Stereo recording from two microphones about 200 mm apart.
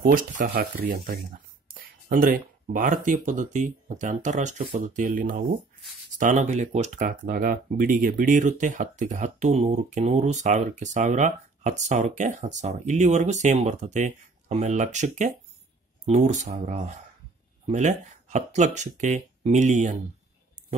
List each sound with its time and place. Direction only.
0.0 s speech: 45° right (ahead or behind)